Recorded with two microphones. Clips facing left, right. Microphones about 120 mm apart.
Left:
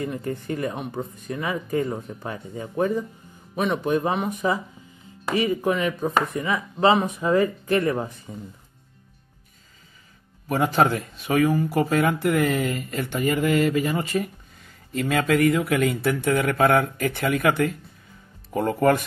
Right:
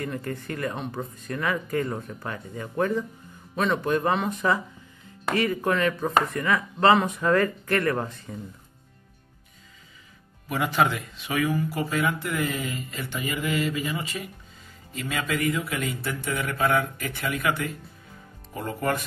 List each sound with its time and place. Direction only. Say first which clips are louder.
0.0 s speech: left 3 dB; 20° left (ahead or behind)
10.5 s speech: left 4 dB; 45° left (ahead or behind)